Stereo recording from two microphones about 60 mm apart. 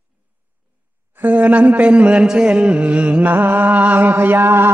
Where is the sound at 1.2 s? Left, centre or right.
Right.